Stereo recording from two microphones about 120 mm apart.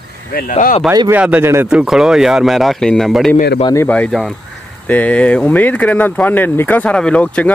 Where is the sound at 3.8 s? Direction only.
15° left (ahead or behind).